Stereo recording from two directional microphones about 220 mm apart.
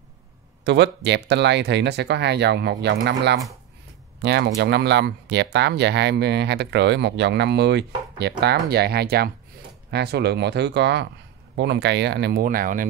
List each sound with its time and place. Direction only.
0.7 s speech: 50° right (ahead or behind)